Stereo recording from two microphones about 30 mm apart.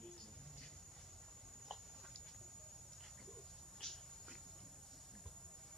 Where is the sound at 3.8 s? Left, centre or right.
Centre.